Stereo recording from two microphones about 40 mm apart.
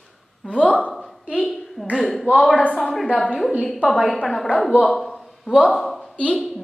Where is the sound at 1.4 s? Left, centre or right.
Centre.